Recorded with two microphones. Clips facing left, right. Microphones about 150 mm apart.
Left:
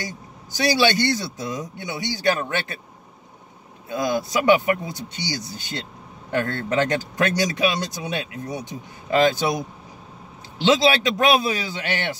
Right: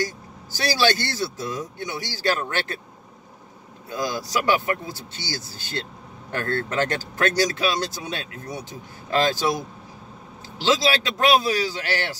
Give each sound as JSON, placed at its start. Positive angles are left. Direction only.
{"t": 0.0, "sound": "speech", "side_deg": 20}
{"t": 3.9, "sound": "speech", "side_deg": 25}
{"t": 10.6, "sound": "speech", "side_deg": 20}